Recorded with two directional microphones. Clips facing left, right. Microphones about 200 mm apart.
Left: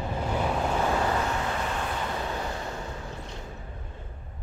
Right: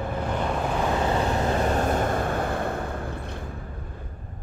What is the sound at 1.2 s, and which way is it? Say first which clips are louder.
Vehicle: right 6 dB; 35° right (ahead or behind).